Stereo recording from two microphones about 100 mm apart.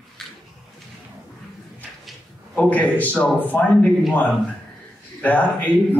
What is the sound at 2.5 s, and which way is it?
A man's voice, 15° left (ahead or behind).